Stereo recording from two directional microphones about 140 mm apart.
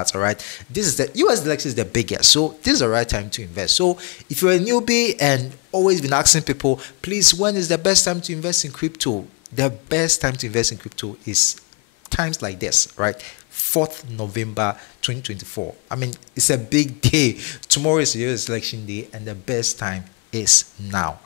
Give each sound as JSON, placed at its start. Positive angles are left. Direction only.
{"t": 0.0, "sound": "speech", "side_deg": 10}